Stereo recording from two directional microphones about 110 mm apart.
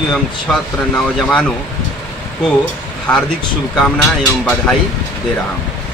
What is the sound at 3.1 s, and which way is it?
Speech, 15° left (ahead or behind).